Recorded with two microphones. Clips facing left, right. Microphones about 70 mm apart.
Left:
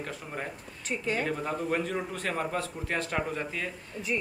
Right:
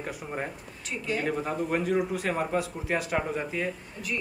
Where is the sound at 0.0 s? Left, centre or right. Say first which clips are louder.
Right 3 dB; centre.